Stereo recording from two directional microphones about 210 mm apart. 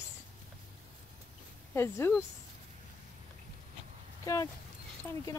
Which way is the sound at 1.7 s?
10° left (ahead or behind).